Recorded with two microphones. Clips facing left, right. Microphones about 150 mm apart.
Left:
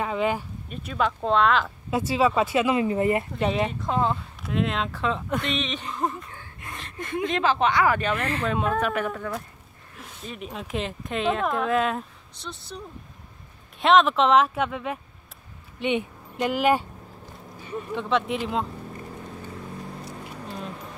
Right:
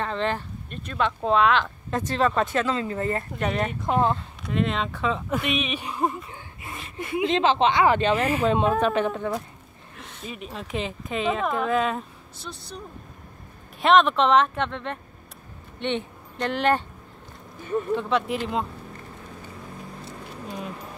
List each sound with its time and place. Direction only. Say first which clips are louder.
0.0 s speech: left 1 dB; 10° left (ahead or behind)
3.4 s speech: left 1 dB; 5° left (ahead or behind)
3.8 s speech: right 6 dB; 15° right (ahead or behind)
4.4 s speech: left 1 dB; centre (ahead or behind)
6.6 s gasp: right 1 dB; 5° right (ahead or behind)
7.2 s speech: right 2 dB; 25° right (ahead or behind)
8.2 s speech: right 5 dB; 10° right (ahead or behind)
8.5 s speech: right 3 dB; 25° right (ahead or behind)
9.9 s speech: even; 5° left (ahead or behind)
17.9 s speech: left 3 dB; centre (ahead or behind)